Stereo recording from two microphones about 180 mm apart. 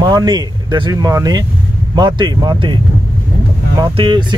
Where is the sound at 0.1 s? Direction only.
25° right (ahead or behind).